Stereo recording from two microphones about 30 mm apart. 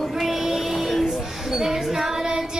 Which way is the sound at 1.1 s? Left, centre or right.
Centre.